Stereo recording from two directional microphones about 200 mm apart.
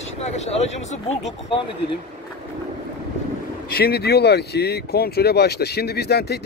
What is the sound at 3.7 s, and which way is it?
Speech, 50° left (ahead or behind).